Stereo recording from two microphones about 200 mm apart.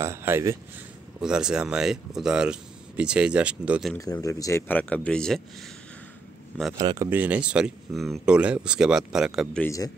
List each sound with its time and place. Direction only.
0.0 s speech: 10° right (ahead or behind)
3.9 s speech: 15° left (ahead or behind)
6.8 s speech: 20° right (ahead or behind)
7.1 s speech: 10° right (ahead or behind)
9.6 s speech: 15° left (ahead or behind)